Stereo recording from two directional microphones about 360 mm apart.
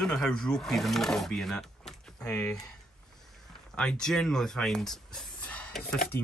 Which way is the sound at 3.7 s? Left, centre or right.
Centre.